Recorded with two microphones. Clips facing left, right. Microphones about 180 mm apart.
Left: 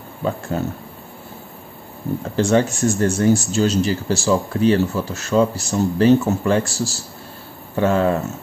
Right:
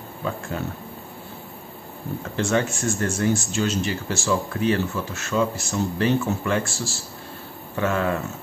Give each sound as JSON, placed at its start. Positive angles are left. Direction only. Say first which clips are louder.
{"t": 0.5, "sound": "speech", "louder": "left 7 dB", "side_deg": 40}
{"t": 2.3, "sound": "speech", "louder": "left 6 dB", "side_deg": 35}